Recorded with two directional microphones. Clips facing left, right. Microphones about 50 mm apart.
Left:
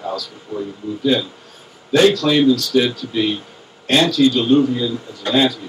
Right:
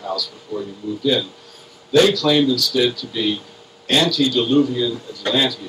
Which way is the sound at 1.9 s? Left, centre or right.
Left.